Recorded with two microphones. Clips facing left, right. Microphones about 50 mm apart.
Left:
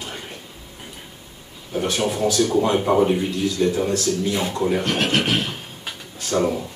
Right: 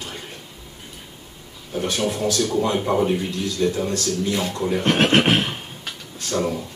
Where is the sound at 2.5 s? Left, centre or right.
Centre.